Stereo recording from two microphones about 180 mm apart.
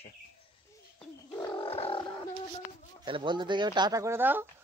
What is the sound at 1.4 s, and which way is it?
Roaring cats, 30° left (ahead or behind).